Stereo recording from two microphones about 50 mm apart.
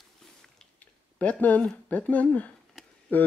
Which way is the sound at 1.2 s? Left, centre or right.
Left.